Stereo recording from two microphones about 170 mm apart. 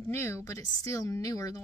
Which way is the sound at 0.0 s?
15° left (ahead or behind).